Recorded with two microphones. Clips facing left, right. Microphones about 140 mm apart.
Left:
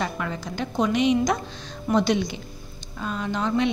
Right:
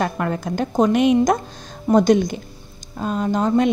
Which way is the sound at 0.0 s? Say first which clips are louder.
Right 6 dB; 55° right (ahead or behind).